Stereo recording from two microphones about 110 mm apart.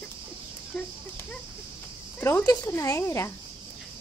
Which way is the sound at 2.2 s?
25° left (ahead or behind).